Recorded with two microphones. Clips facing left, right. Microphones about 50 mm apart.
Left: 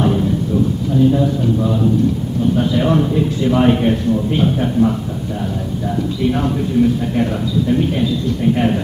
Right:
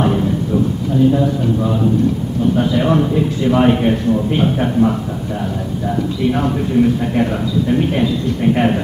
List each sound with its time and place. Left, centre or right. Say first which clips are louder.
0.0 s a sound: even; right
1.1 s a man's voice: even; right
6.4 s a man's voice: right 1 dB; right